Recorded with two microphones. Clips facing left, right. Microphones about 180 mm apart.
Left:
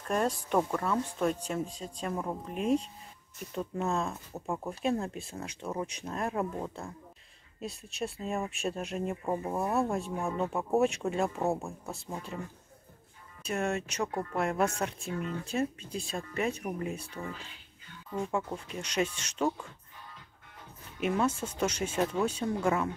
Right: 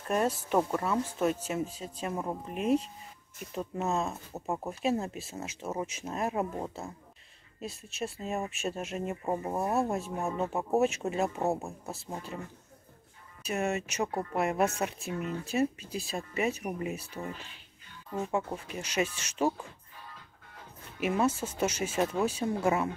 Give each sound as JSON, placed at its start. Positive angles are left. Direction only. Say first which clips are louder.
{"t": 0.1, "sound": "speech", "louder": "right 1 dB", "side_deg": -5}
{"t": 4.1, "sound": "speech", "louder": "right 1 dB", "side_deg": -20}
{"t": 4.6, "sound": "speech", "louder": "even", "side_deg": -5}
{"t": 7.6, "sound": "speech", "louder": "even", "side_deg": 0}
{"t": 9.3, "sound": "speech", "louder": "right 1 dB", "side_deg": -15}
{"t": 9.8, "sound": "speech", "louder": "even", "side_deg": 0}
{"t": 21.0, "sound": "speech", "louder": "right 1 dB", "side_deg": -5}